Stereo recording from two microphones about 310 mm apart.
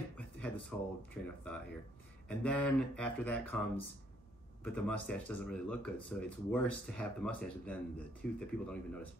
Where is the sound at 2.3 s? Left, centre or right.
Centre.